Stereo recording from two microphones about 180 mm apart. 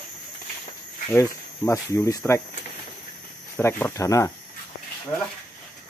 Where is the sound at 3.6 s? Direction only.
15° left (ahead or behind).